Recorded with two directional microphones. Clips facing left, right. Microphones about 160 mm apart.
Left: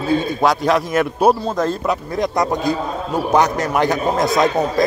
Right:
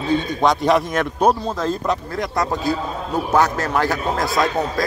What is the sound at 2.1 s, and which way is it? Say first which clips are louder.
A man's voice: left 4 dB; 20° left (ahead or behind).